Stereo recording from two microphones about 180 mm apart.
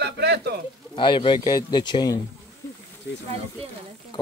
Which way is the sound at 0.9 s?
25° left (ahead or behind).